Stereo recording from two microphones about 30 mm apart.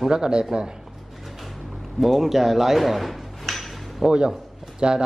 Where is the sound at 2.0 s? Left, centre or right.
Centre.